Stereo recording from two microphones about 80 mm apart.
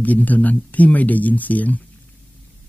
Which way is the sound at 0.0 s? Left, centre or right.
Centre.